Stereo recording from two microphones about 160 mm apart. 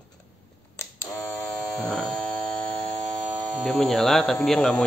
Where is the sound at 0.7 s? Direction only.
20° left (ahead or behind).